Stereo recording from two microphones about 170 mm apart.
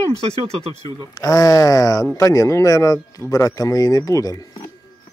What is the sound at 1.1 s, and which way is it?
Speech, 20° left (ahead or behind).